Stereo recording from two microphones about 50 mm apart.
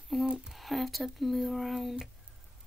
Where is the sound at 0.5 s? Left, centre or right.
Centre.